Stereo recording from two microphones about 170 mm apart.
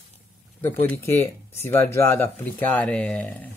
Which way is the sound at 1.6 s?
15° left (ahead or behind).